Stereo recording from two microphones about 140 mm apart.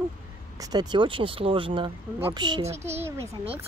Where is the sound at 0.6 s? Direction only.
30° right (ahead or behind).